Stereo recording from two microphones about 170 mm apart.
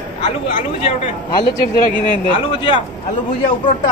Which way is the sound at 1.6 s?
55° left (ahead or behind).